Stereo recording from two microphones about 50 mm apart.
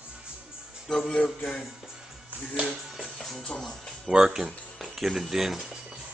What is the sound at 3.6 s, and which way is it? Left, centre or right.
Speech, centre.